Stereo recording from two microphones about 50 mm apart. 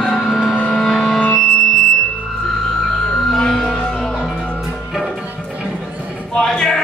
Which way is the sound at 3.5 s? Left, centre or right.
Centre.